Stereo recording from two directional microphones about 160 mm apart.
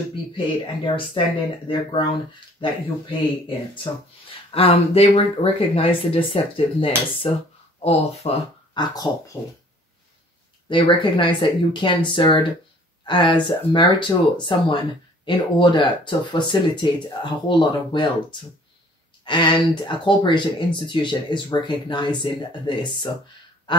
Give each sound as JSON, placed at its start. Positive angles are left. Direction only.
{"t": 0.8, "sound": "speech", "side_deg": 30}
{"t": 8.7, "sound": "speech", "side_deg": 25}
{"t": 10.7, "sound": "speech", "side_deg": 30}